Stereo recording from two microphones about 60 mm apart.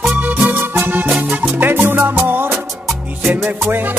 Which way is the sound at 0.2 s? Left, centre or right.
Right.